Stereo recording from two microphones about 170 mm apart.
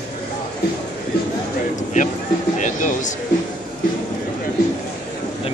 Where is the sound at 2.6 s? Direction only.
45° left (ahead or behind).